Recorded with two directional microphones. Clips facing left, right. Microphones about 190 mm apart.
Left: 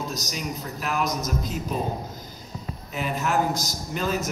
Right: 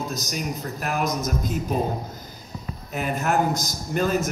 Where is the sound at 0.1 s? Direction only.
50° right (ahead or behind).